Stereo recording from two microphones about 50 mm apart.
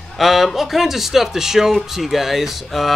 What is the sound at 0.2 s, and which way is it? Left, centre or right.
Speech, centre.